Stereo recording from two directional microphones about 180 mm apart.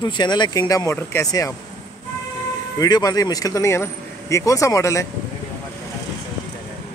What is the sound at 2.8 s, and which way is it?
Speech, 20° left (ahead or behind).